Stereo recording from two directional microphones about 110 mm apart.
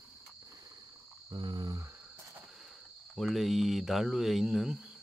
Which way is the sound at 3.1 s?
Centre (ahead or behind).